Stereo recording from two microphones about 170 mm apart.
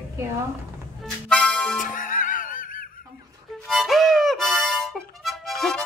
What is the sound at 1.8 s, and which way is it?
Music, 50° left (ahead or behind).